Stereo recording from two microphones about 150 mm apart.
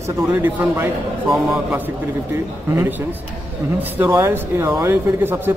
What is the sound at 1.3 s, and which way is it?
Speech, centre (ahead or behind).